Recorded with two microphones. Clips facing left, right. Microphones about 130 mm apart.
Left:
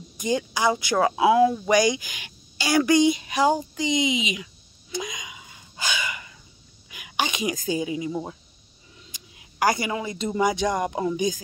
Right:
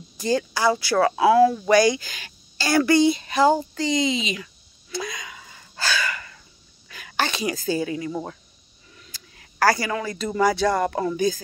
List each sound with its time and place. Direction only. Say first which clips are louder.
0.2 s speech: right 2 dB; 15° left (ahead or behind)
6.9 s a sound: right 2 dB; 15° left (ahead or behind)
8.9 s speech: even; 15° left (ahead or behind)